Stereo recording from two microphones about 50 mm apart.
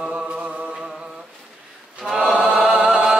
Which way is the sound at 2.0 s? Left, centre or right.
Centre.